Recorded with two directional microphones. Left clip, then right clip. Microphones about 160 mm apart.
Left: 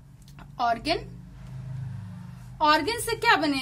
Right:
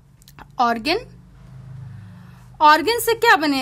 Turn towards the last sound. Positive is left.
turn(degrees=-50)  # may be behind; listen again after turning